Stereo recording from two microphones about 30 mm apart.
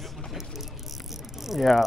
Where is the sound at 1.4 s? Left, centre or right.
Centre.